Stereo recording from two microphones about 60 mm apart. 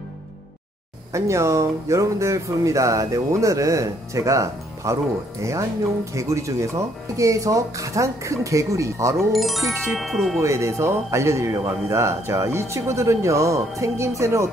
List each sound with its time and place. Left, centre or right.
1.1 s speech: right
9.3 s speech: centre
10.4 s a man's voice: right